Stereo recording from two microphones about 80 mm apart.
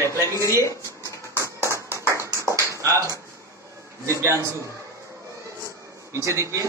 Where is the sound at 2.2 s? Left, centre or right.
Right.